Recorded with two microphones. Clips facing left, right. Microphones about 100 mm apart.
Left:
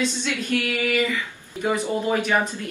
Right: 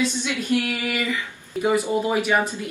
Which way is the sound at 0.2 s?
15° right (ahead or behind).